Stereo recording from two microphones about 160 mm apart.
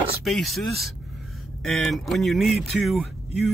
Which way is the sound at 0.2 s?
Centre (ahead or behind).